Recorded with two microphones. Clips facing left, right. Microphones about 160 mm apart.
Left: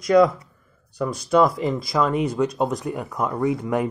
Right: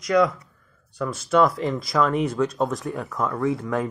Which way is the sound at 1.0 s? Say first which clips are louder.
Left 1 dB; 5° right (ahead or behind).